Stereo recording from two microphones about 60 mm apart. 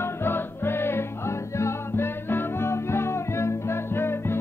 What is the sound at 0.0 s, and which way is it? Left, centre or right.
Music, left.